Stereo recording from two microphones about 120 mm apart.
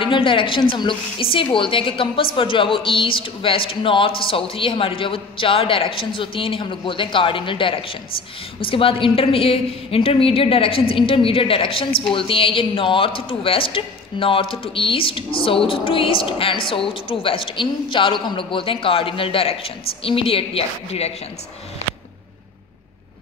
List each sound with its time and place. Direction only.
0.0 s speech: 45° left (ahead or behind)